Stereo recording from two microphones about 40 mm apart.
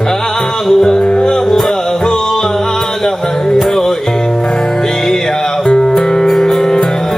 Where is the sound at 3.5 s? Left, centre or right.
Centre.